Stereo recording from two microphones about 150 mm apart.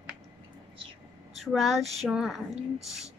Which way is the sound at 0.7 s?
35° right (ahead or behind).